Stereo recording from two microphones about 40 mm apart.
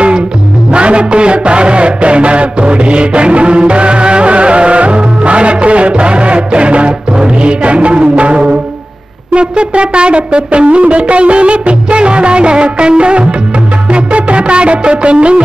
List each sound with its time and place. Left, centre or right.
0.7 s music: right